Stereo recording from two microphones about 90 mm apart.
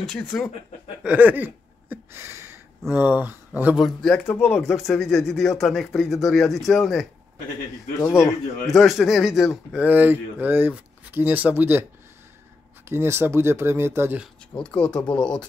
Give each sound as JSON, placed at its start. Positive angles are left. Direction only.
{"t": 0.3, "sound": "speech", "side_deg": 5}
{"t": 1.0, "sound": "speech", "side_deg": -15}
{"t": 4.0, "sound": "speech", "side_deg": 10}
{"t": 4.3, "sound": "speech", "side_deg": 20}
{"t": 4.6, "sound": "speech", "side_deg": 5}
{"t": 8.0, "sound": "speech", "side_deg": 30}
{"t": 8.6, "sound": "speech", "side_deg": 0}
{"t": 9.8, "sound": "speech", "side_deg": -20}
{"t": 12.8, "sound": "speech", "side_deg": -25}
{"t": 14.8, "sound": "speech", "side_deg": 10}